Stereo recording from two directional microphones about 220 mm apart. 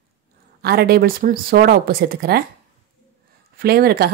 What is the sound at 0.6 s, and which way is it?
A woman's voice, 45° right (ahead or behind).